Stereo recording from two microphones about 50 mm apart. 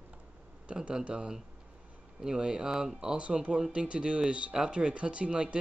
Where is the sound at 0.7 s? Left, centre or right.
Right.